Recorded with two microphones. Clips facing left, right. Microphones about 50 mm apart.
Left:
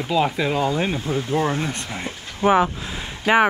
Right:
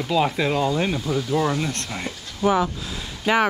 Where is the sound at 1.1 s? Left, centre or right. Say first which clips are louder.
Even; left.